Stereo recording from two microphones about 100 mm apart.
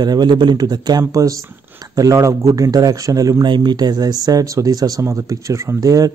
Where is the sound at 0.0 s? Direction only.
45° right (ahead or behind).